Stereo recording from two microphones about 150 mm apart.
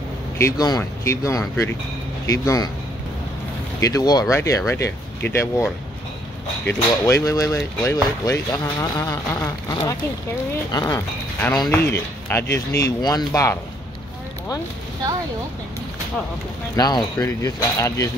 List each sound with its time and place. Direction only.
0.4 s speech: 20° left (ahead or behind)
3.8 s speech: 25° left (ahead or behind)
16.7 s speech: 25° left (ahead or behind)